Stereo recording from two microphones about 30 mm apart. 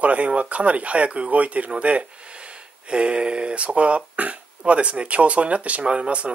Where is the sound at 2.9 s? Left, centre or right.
Right.